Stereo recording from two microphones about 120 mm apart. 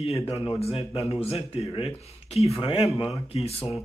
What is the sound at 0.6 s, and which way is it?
Speech, 55° left (ahead or behind).